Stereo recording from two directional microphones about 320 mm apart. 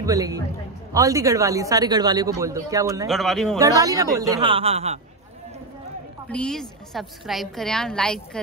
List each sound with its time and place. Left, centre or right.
0.0 s speech: centre
3.1 s a woman's voice: centre
3.8 s speech: centre
6.2 s a woman's voice: centre